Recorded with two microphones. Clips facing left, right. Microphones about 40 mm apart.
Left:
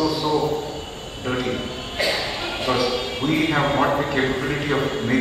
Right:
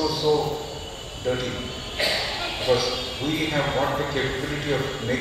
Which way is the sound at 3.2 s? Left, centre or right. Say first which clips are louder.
Left 5 dB; left.